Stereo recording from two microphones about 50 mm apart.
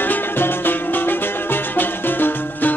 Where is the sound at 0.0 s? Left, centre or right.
Left.